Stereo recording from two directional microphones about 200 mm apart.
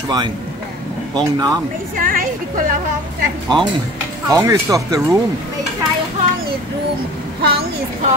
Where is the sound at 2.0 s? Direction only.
45° right (ahead or behind).